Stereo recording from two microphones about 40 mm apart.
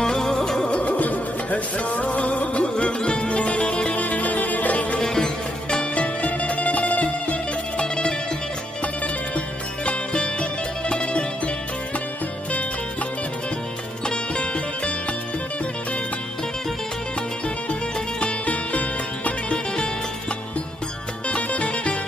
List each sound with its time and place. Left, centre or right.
0.0 s music: centre
0.7 s music: left
4.9 s music: centre; by 7.3 s left
7.8 s music: left
9.8 s music: left
14.0 s music: left
18.2 s music: left
21.3 s music: left